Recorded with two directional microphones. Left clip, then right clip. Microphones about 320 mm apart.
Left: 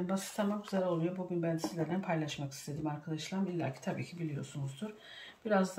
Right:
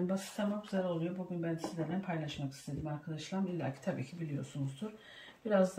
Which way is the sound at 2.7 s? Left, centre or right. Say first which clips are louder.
Left 1 dB; left.